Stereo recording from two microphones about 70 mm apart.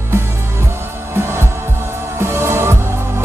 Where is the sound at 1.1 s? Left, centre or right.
Right.